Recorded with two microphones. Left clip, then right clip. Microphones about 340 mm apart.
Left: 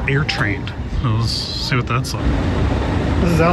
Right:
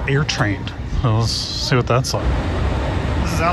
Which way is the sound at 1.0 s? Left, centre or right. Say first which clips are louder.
Right 1 dB; centre.